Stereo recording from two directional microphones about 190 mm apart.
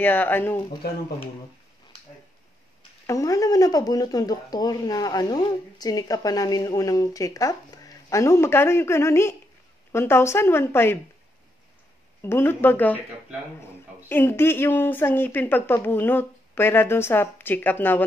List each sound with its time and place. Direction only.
0.0 s speech: 10° left (ahead or behind)
3.1 s speech: 15° left (ahead or behind)
12.2 s speech: 10° left (ahead or behind)
14.0 s speech: 10° left (ahead or behind)